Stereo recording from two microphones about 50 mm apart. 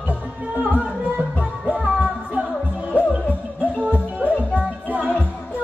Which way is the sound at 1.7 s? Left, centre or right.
Right.